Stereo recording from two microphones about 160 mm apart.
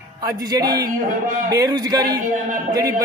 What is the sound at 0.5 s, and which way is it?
A man's voice, 25° right (ahead or behind).